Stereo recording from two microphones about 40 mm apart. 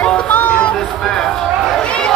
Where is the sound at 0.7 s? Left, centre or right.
Centre.